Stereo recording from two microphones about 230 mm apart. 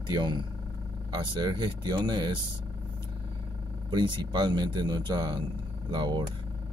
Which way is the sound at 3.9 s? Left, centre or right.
Centre.